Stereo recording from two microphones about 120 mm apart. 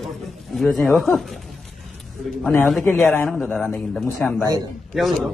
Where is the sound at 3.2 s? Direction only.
5° left (ahead or behind).